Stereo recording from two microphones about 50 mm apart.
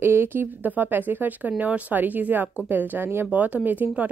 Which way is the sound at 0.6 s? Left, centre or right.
Right.